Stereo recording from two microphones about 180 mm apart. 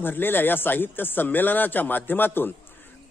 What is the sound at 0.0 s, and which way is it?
A man's voice, 10° left (ahead or behind).